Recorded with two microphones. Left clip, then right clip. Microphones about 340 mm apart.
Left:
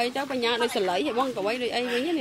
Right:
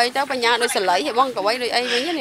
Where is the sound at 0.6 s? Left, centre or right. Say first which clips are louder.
Right 6 dB; right.